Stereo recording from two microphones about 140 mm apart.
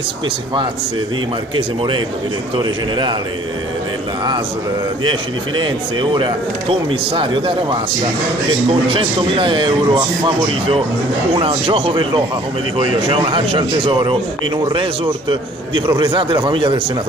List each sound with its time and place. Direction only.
2.5 s speech: 35° right (ahead or behind)
5.6 s speech: 35° right (ahead or behind)